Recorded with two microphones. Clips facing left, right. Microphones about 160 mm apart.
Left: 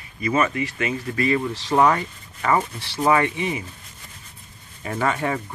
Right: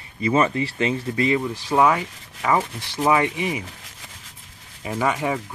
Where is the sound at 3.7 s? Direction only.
90° right.